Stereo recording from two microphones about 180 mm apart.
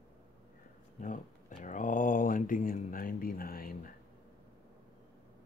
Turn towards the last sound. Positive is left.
turn(degrees=55)  # may be behind; listen again after turning